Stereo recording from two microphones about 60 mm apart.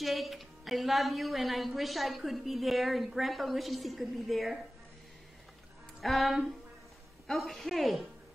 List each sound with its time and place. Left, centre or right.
0.0 s speech: centre
5.9 s speech: centre